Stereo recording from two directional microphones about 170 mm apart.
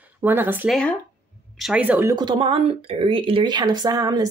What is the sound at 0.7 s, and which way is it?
Speech, 5° left (ahead or behind).